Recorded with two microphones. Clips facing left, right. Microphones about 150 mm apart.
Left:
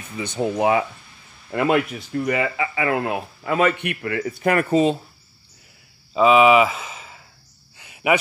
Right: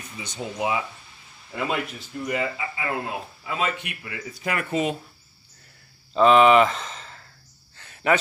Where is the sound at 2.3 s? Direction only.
85° left; by 4.7 s 55° left (ahead or behind).